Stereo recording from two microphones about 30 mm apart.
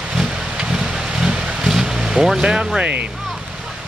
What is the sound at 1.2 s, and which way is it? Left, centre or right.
Vehicle, centre.